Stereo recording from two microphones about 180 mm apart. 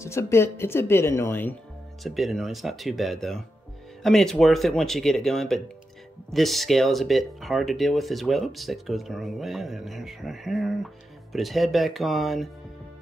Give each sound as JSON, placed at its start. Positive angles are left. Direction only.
{"t": 0.0, "sound": "speech", "side_deg": 15}
{"t": 2.0, "sound": "speech", "side_deg": 0}